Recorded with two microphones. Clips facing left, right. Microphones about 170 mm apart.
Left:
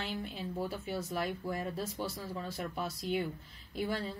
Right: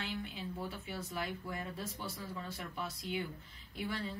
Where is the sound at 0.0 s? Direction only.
40° left (ahead or behind).